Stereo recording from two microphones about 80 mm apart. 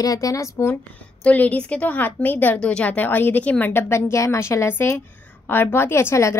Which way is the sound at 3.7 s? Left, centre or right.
Left.